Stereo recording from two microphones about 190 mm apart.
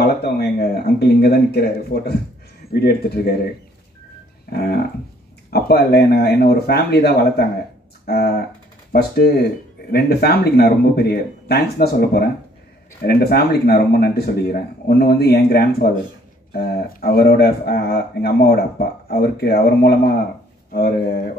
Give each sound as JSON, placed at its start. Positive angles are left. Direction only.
{"t": 0.0, "sound": "speech", "side_deg": 60}
{"t": 4.5, "sound": "speech", "side_deg": 55}